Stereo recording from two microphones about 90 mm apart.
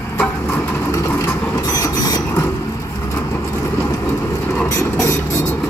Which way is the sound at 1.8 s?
50° left (ahead or behind).